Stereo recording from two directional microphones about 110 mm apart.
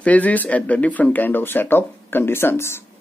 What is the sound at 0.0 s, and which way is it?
Speech, 15° left (ahead or behind).